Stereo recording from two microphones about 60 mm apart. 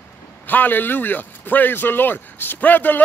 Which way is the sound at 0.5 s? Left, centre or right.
Left.